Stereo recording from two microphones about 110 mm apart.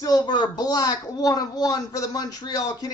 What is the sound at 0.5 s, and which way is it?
Speech, 35° left (ahead or behind).